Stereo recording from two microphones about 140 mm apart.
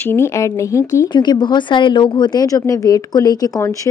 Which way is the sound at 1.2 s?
30° left (ahead or behind).